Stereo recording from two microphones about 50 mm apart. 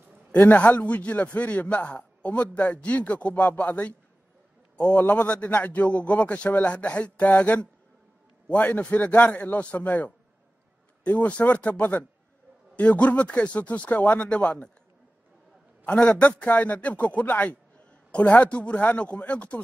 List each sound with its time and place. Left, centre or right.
0.5 s a man's voice: left
16.2 s a man's voice: left